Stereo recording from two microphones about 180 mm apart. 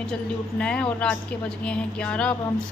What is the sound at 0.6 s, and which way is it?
A woman's voice, 5° left (ahead or behind).